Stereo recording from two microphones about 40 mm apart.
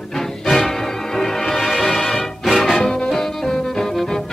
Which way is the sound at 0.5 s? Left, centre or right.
Centre.